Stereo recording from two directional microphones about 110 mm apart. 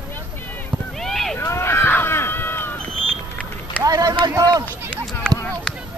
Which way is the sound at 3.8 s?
35° right (ahead or behind).